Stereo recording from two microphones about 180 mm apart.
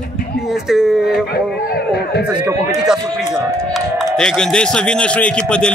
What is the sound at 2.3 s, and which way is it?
Speech, 5° right (ahead or behind).